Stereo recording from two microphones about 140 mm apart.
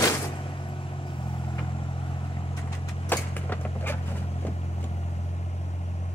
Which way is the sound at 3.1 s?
15° left (ahead or behind).